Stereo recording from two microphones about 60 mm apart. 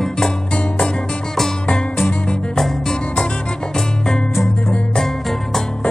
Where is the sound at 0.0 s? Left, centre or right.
Centre.